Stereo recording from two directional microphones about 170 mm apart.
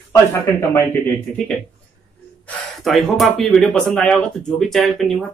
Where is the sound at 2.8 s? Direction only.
Centre (ahead or behind).